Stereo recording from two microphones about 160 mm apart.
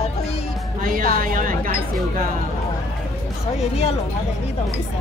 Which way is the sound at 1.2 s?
60° right (ahead or behind).